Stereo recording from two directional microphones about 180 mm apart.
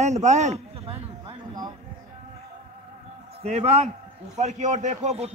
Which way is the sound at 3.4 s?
35° right (ahead or behind).